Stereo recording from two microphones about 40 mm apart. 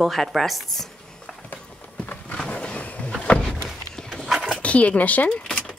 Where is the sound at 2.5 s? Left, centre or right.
Left.